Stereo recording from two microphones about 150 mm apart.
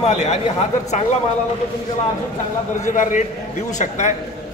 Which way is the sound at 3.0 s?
60° left (ahead or behind).